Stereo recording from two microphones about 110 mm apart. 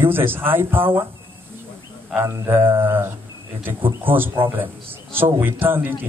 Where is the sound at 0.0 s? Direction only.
20° right (ahead or behind).